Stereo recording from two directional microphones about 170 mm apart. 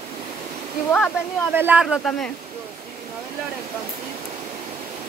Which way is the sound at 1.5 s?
10° right (ahead or behind).